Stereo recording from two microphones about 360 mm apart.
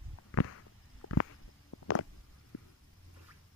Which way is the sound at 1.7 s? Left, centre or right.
Left.